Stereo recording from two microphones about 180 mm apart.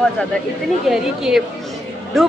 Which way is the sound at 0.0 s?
5° left (ahead or behind).